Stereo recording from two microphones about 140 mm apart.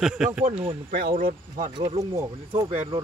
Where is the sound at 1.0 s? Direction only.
90° right.